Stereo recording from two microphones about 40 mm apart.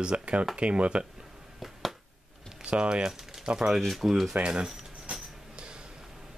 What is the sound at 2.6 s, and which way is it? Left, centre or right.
Typing, right.